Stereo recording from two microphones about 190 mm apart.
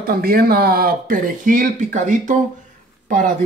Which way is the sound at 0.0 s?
50° right (ahead or behind).